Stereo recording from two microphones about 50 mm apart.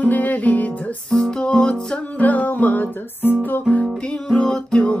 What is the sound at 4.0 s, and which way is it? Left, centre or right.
Music, centre.